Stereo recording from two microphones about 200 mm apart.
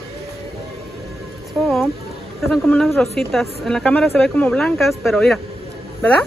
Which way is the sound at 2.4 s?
Centre (ahead or behind).